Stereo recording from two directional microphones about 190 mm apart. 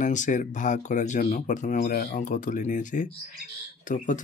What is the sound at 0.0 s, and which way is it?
Speech, 40° left (ahead or behind).